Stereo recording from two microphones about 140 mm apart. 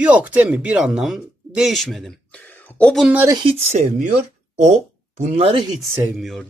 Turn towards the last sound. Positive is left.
turn(degrees=0)  # may be behind; listen again after turning